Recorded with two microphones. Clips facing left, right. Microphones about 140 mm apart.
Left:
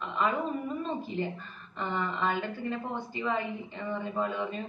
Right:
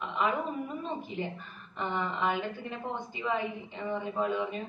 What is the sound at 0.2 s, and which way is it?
Speech, 15° right (ahead or behind).